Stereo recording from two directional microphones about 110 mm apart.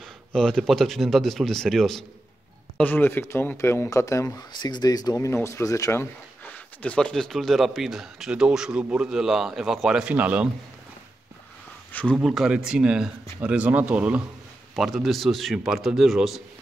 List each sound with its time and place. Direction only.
0.3 s speech: 5° left (ahead or behind)
2.8 s speech: 15° left (ahead or behind); by 10.5 s 10° right (ahead or behind)
11.9 s speech: 10° left (ahead or behind)
12.2 s speech: 5° right (ahead or behind)
14.8 s speech: centre (ahead or behind)